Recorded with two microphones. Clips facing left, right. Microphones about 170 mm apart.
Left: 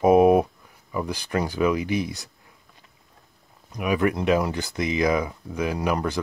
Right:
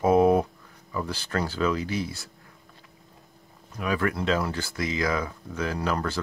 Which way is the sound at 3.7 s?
15° left (ahead or behind).